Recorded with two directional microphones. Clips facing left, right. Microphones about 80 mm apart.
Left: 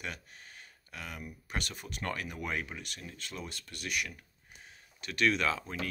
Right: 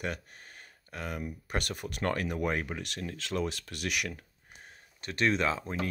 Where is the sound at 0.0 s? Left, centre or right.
Right.